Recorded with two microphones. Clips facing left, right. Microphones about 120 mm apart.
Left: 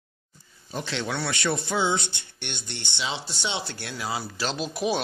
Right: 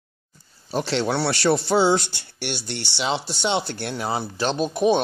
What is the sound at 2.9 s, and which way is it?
Speech, 65° right (ahead or behind).